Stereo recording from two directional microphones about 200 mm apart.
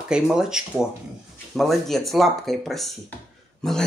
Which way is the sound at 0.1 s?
5° right (ahead or behind).